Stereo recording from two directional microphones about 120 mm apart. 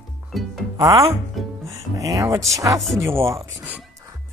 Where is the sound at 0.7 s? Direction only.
25° right (ahead or behind).